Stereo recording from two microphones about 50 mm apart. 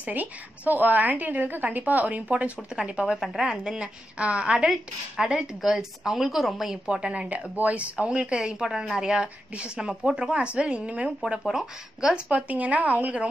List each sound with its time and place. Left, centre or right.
0.0 s a woman's voice: right; by 3.2 s centre
3.2 s speech: centre
3.6 s a woman's voice: right
11.4 s speech: centre
12.3 s a woman's voice: right